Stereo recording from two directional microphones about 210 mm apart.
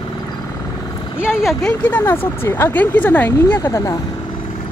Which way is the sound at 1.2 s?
5° right (ahead or behind).